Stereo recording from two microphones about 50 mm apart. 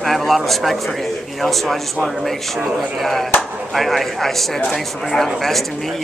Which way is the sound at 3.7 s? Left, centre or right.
Centre.